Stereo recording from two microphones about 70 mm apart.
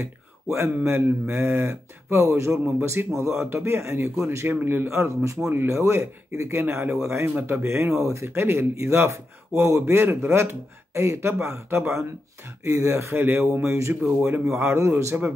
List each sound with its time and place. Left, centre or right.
0.0 s a sound: right
0.8 s a man's voice: right
4.6 s speech: right
13.5 s speech: right
14.4 s speech: centre
14.7 s a man's voice: right